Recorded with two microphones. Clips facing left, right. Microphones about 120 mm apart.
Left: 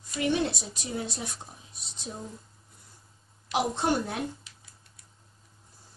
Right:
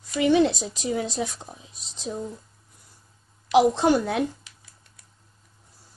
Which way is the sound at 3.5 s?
90° right.